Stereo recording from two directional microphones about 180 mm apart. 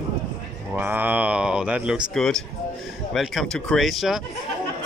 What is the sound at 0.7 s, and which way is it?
Speech, 10° right (ahead or behind).